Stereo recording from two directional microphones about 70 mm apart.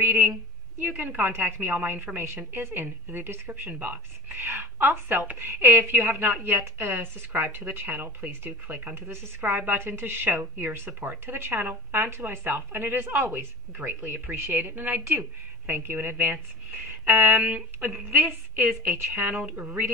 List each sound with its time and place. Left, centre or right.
0.0 s a woman's voice: right